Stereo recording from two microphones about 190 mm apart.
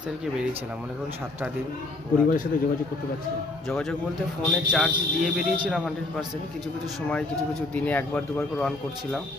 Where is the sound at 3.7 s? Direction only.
5° left (ahead or behind).